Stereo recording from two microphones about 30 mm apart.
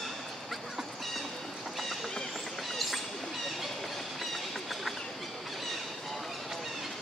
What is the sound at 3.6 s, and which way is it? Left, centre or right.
Train, centre.